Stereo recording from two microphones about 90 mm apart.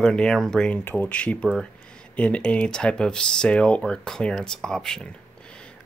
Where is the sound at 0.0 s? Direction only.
10° left (ahead or behind).